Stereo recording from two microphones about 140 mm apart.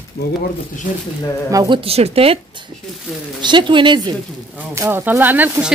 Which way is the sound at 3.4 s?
35° right (ahead or behind).